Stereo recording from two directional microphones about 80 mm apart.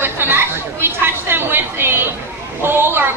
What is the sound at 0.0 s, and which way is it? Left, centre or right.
Chatter, right.